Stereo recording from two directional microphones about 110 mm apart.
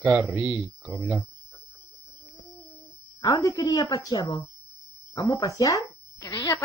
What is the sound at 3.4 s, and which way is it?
A woman's voice, 25° left (ahead or behind).